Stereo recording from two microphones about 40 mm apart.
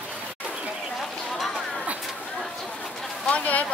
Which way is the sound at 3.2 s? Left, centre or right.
Left.